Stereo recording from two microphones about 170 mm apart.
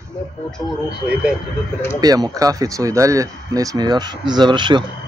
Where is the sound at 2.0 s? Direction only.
20° right (ahead or behind).